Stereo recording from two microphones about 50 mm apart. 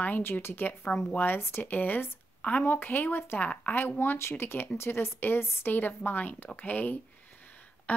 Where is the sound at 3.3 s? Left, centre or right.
Left.